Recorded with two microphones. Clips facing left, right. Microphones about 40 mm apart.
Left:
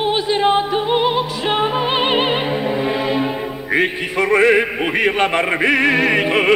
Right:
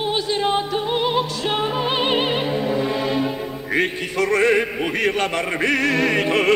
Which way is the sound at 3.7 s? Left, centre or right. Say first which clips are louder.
Left 3 dB; left.